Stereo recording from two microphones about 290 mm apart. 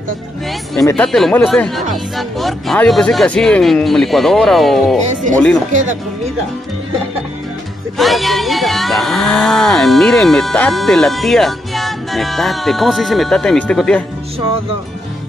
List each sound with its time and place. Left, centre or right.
0.7 s speech: centre
5.7 s speech: right
8.0 s speech: centre